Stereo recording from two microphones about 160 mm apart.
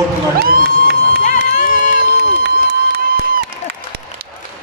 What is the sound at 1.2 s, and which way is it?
Run, 55° left (ahead or behind).